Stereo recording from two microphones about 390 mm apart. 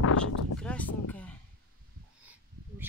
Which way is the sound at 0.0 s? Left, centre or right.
Left.